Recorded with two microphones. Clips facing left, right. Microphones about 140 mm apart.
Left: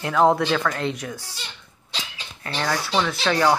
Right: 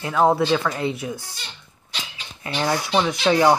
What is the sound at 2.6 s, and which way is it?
Speech, 20° right (ahead or behind).